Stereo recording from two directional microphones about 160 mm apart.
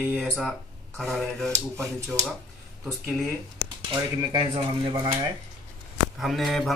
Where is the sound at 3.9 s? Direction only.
25° right (ahead or behind).